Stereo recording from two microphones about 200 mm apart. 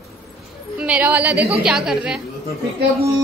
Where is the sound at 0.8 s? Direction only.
5° right (ahead or behind).